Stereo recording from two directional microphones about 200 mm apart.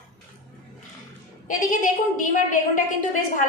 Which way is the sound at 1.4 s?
40° left (ahead or behind).